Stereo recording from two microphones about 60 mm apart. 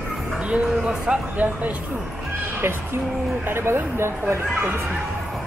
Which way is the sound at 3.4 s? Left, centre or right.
Right.